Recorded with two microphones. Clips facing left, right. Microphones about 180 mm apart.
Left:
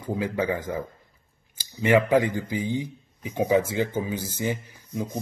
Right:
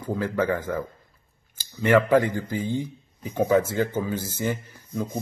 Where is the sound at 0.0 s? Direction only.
15° left (ahead or behind).